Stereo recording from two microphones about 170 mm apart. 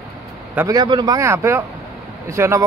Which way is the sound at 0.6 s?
20° right (ahead or behind).